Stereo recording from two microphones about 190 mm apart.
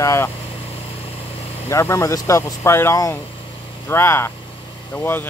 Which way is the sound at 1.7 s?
15° left (ahead or behind).